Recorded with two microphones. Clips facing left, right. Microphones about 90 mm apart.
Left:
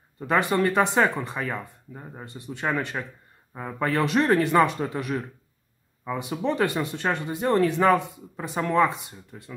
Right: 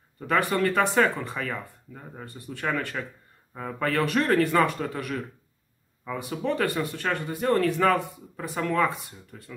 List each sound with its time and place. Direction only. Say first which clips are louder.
0.3 s speech: left 2 dB; 20° left (ahead or behind)